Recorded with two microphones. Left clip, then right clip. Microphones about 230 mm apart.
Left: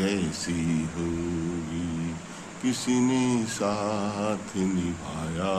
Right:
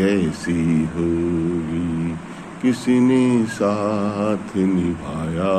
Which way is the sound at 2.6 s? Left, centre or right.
Centre.